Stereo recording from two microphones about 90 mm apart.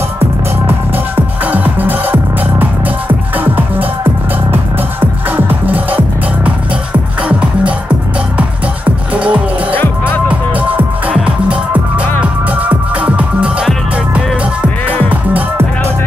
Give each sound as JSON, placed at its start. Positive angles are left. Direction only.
{"t": 0.9, "sound": "music", "side_deg": -20}
{"t": 8.4, "sound": "music", "side_deg": -15}
{"t": 9.8, "sound": "music", "side_deg": 20}
{"t": 10.2, "sound": "music", "side_deg": -15}